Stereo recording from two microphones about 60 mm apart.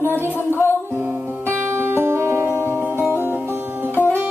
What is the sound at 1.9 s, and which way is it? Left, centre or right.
Music, right.